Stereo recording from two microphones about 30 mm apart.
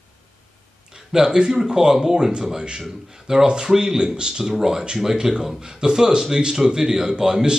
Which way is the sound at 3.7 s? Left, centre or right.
Centre.